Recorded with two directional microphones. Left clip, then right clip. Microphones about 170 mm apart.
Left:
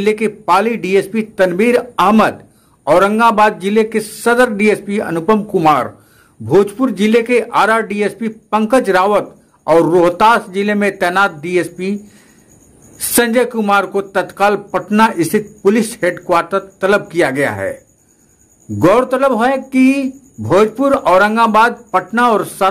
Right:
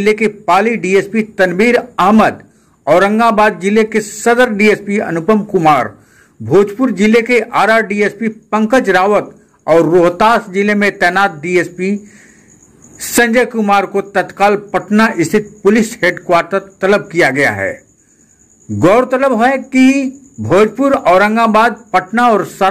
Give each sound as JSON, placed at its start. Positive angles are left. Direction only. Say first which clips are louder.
{"t": 0.0, "sound": "speech", "louder": "right 3 dB", "side_deg": 5}
{"t": 18.8, "sound": "speech", "louder": "right 1 dB", "side_deg": 0}